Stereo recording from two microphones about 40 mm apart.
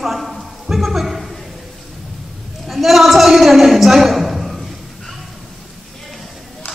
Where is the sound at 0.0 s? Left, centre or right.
Centre.